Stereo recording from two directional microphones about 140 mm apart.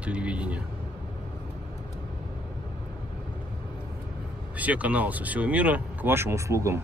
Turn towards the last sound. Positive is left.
turn(degrees=-20)  # may be behind; listen again after turning